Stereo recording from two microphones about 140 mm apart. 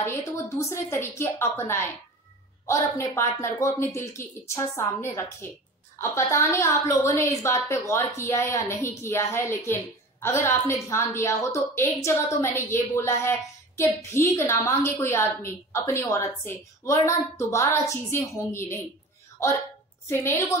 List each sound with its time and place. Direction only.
0.6 s a woman's voice: 20° left (ahead or behind)
20.1 s a woman's voice: 20° left (ahead or behind)